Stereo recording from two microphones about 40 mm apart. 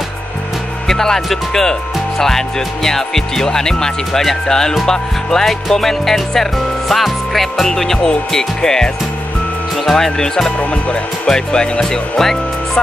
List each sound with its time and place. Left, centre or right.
0.8 s speech: centre
10.6 s speech: left
11.2 s speech: centre